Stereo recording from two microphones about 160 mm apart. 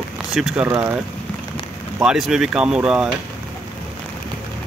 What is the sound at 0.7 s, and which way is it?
Speech, 20° right (ahead or behind).